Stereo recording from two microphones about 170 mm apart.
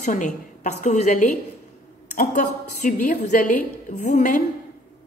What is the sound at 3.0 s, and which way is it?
A woman's voice, 50° left (ahead or behind).